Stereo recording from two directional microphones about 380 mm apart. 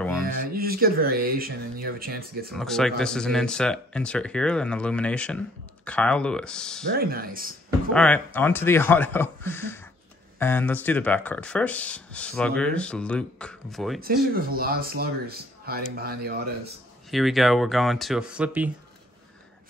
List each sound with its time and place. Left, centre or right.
0.2 s speech: right
2.5 s speech: centre
7.0 s speech: right
7.9 s speech: centre
14.3 s speech: right
17.1 s speech: centre